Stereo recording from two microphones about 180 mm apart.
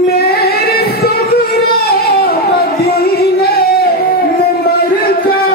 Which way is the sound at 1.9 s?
60° left (ahead or behind).